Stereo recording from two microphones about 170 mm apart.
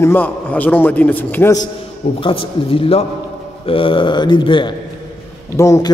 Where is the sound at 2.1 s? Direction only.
30° left (ahead or behind).